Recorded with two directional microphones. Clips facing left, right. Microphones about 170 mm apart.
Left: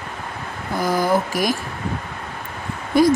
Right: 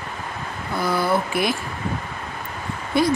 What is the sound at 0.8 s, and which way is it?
Speech, 40° left (ahead or behind).